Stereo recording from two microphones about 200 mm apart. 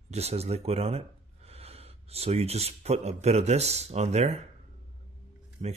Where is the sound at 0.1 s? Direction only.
30° right (ahead or behind).